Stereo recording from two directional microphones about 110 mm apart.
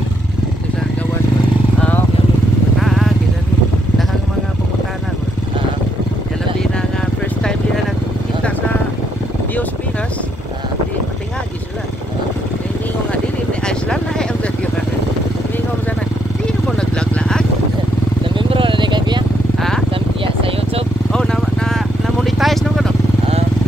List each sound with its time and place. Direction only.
2.8 s vehicle: centre (ahead or behind)
13.7 s vehicle: 5° left (ahead or behind)
16.4 s vehicle: 5° left (ahead or behind)
18.2 s vehicle: 50° right (ahead or behind)
21.1 s vehicle: 5° left (ahead or behind)